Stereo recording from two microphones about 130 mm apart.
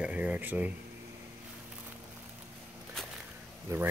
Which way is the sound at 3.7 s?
20° right (ahead or behind).